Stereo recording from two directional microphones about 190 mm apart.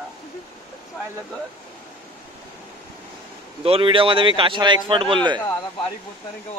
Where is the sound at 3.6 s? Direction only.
30° right (ahead or behind).